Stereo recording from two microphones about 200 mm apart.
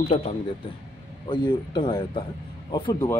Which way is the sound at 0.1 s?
35° left (ahead or behind).